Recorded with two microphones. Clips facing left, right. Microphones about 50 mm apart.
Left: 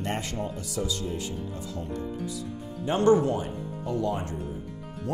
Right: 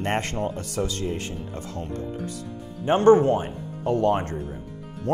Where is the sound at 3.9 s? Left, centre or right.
Right.